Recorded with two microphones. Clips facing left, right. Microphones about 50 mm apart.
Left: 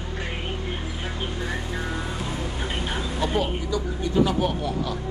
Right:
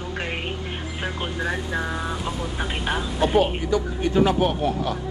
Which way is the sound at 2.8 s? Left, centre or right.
Right.